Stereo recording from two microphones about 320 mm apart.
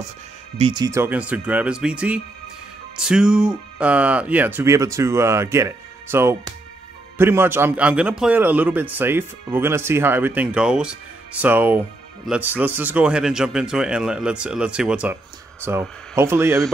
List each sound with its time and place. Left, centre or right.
0.6 s speech: centre